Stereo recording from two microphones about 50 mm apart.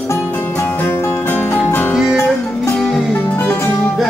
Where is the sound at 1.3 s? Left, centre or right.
Left.